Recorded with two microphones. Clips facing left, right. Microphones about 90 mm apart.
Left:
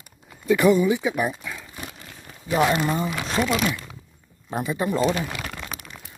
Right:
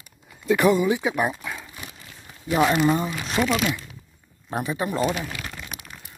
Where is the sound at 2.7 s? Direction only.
5° right (ahead or behind).